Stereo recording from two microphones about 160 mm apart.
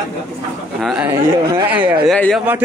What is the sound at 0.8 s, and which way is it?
Music, centre (ahead or behind).